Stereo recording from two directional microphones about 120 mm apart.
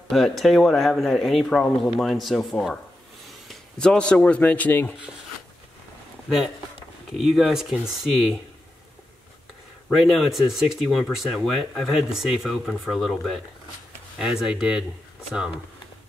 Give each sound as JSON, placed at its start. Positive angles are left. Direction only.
{"t": 0.1, "sound": "speech", "side_deg": 0}
{"t": 7.2, "sound": "speech", "side_deg": 0}
{"t": 9.8, "sound": "speech", "side_deg": 0}